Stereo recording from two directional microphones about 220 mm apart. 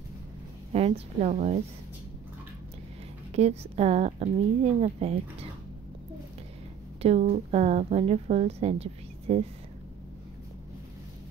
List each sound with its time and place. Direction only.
0.7 s a woman's voice: 25° right (ahead or behind)
3.3 s a woman's voice: 30° right (ahead or behind)
7.0 s a woman's voice: 25° right (ahead or behind)